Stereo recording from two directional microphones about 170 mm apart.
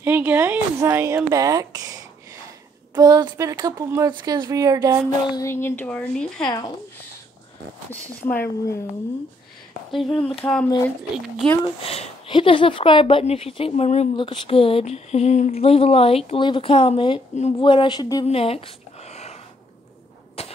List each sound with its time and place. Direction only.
0.0 s speech: 10° right (ahead or behind)
5.3 s a woman's voice: 15° left (ahead or behind)
7.9 s a woman's voice: 10° left (ahead or behind)
10.0 s speech: 30° left (ahead or behind)
10.4 s speech: 5° left (ahead or behind)
11.6 s speech: 35° left (ahead or behind)
18.2 s speech: 35° left (ahead or behind)
19.0 s a sound: 40° left (ahead or behind)
20.4 s a sound: 35° left (ahead or behind)